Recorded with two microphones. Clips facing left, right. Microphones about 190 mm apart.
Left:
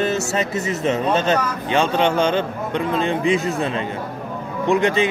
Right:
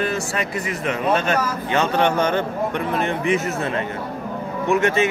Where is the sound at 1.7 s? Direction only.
15° left (ahead or behind).